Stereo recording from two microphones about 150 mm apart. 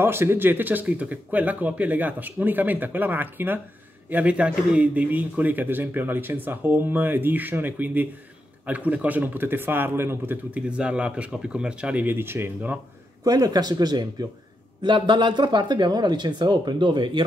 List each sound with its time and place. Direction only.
0.0 s speech: 15° right (ahead or behind); by 17.2 s 30° right (ahead or behind)